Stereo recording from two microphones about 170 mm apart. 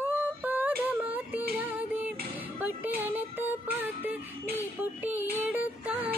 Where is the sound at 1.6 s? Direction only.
10° right (ahead or behind).